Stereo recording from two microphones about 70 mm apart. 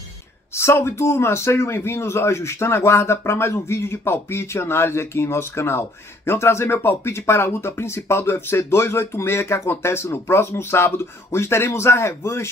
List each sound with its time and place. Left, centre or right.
0.6 s a man's voice: left